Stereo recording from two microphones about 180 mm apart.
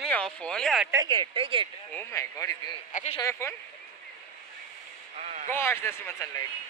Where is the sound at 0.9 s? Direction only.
20° right (ahead or behind).